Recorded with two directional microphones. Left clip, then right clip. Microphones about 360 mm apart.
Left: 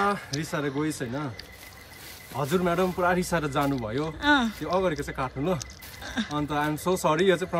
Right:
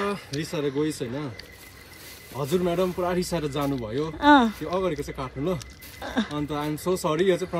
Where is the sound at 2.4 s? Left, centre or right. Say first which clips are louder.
Even; centre.